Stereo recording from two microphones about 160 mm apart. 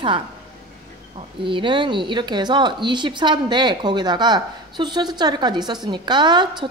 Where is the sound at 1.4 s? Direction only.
30° right (ahead or behind).